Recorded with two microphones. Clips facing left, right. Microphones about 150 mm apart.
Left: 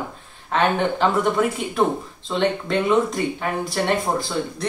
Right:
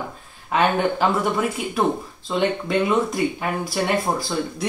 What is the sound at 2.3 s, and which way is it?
Speech, 5° right (ahead or behind).